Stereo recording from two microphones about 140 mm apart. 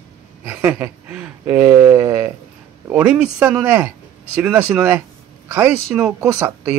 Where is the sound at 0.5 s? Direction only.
10° right (ahead or behind).